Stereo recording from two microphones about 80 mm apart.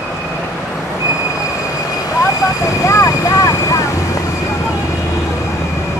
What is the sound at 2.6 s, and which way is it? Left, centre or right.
Vehicle, left.